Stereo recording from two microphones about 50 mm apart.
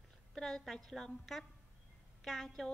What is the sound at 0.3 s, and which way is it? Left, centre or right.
A woman's voice, centre.